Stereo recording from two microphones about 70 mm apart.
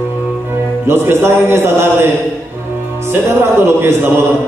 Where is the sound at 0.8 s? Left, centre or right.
Right.